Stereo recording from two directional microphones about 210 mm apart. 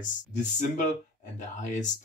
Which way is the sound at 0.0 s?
35° left (ahead or behind).